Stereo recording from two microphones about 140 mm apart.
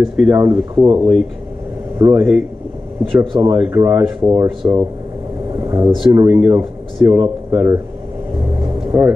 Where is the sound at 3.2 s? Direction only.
35° right (ahead or behind).